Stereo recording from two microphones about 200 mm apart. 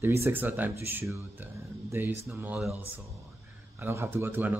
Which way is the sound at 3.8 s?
10° right (ahead or behind).